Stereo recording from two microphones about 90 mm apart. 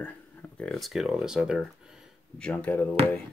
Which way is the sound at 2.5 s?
15° left (ahead or behind).